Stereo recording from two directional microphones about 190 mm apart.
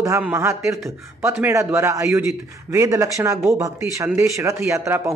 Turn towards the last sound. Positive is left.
turn(degrees=-15)  # may be behind; listen again after turning